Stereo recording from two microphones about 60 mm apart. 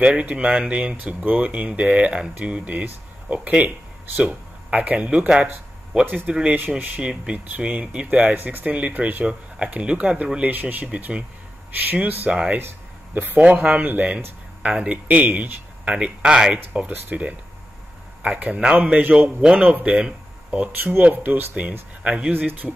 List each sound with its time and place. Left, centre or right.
0.0 s speech: centre
7.0 s speech: centre
12.3 s speech: centre
12.5 s a sound: right
13.4 s speech: centre
16.7 s speech: right
21.0 s speech: right
22.3 s speech: right